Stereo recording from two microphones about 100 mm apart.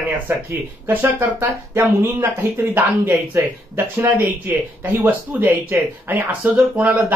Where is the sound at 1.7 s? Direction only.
30° right (ahead or behind).